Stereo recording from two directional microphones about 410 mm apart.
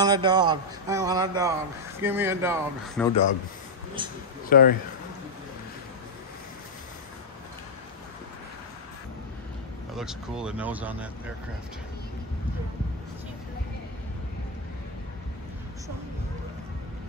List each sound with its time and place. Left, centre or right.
0.0 s speech: centre
4.5 s speech: left
9.9 s speech: centre